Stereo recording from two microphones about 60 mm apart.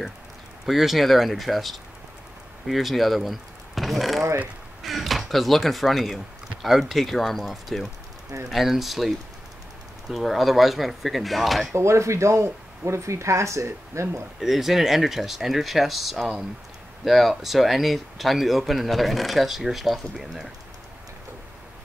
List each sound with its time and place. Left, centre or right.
0.7 s speech: centre
11.7 s speech: right
14.4 s speech: centre